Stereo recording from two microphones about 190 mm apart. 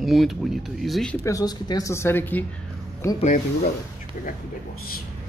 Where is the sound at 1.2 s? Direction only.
20° left (ahead or behind).